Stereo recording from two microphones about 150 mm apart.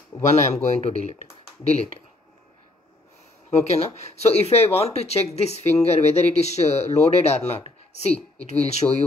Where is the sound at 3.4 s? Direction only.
45° left (ahead or behind).